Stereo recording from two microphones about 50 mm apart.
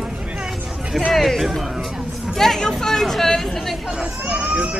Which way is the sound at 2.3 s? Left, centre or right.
Centre.